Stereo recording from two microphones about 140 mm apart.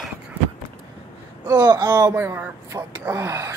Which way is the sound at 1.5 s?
30° right (ahead or behind).